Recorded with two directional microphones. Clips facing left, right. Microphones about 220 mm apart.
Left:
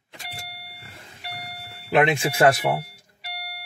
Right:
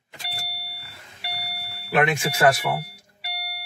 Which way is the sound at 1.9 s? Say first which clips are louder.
Left 2 dB; 25° left (ahead or behind).